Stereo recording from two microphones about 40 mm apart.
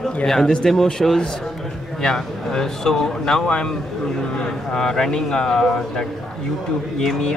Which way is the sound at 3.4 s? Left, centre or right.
Left.